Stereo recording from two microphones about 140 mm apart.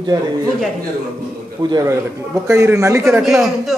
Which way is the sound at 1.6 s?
25° right (ahead or behind).